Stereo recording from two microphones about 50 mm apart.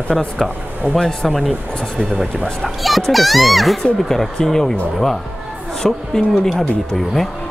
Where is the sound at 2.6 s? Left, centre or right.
Centre.